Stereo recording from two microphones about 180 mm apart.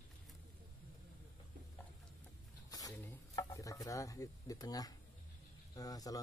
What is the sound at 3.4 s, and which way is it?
Speech, 20° left (ahead or behind).